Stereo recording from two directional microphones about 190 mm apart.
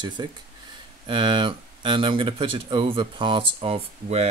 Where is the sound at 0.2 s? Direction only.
25° right (ahead or behind).